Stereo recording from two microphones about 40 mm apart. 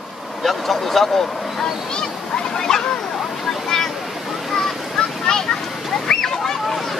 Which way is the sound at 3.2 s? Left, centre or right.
Centre.